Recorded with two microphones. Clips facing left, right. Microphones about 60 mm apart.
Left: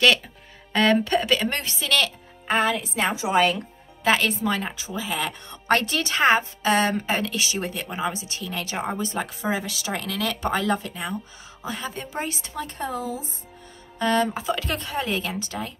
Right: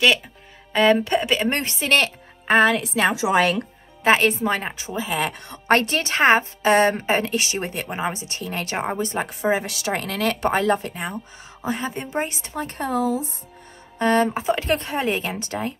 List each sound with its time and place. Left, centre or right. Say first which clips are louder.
0.7 s speech: right 2 dB; centre; by 2.6 s right
2.7 s a woman's voice: right 4 dB; right
4.0 s a woman's voice: right 4 dB; right
13.9 s speech: right 3 dB; right